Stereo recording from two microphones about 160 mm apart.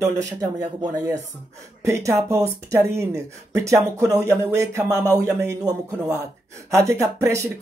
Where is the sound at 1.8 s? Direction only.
20° right (ahead or behind).